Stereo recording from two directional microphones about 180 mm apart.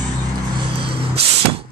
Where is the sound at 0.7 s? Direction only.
30° right (ahead or behind).